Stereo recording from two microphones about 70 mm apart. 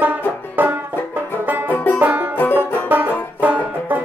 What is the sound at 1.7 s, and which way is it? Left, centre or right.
Banjo, left.